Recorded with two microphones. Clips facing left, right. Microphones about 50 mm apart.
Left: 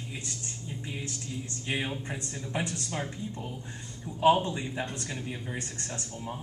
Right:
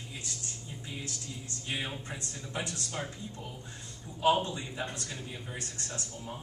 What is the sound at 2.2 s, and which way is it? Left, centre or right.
Speech, left.